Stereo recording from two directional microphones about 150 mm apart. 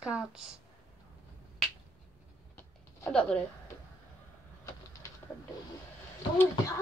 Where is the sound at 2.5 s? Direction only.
10° left (ahead or behind).